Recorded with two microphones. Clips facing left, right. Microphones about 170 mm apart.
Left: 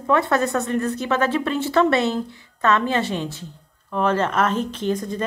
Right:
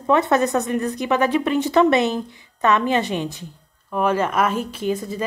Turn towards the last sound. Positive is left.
turn(degrees=-5)  # may be behind; listen again after turning